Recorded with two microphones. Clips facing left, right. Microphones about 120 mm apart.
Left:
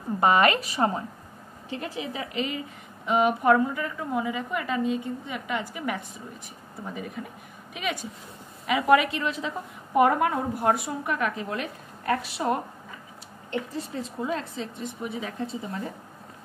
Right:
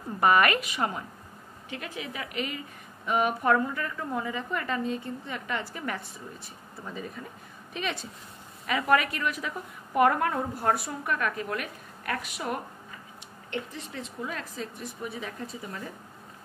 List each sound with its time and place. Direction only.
0.2 s a woman's voice: 25° left (ahead or behind)
7.7 s a woman's voice: 15° left (ahead or behind)